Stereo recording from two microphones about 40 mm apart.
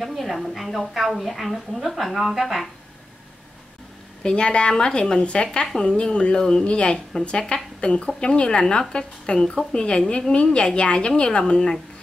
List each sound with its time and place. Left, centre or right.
0.0 s a woman's voice: centre
4.2 s a woman's voice: left